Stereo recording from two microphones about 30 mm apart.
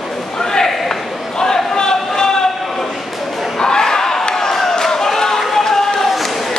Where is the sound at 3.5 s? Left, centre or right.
Left.